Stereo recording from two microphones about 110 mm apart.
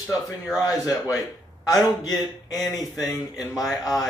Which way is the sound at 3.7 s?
35° left (ahead or behind).